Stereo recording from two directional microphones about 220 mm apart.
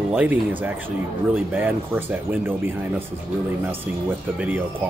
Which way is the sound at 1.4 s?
10° right (ahead or behind).